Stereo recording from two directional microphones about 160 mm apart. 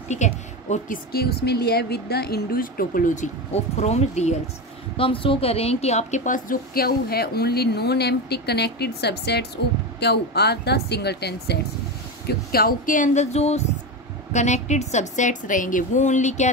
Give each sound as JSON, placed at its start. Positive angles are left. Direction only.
{"t": 0.1, "sound": "a woman's voice", "side_deg": 50}
{"t": 1.1, "sound": "speech", "side_deg": 80}
{"t": 3.7, "sound": "a woman's voice", "side_deg": 45}
{"t": 12.3, "sound": "a woman's voice", "side_deg": 70}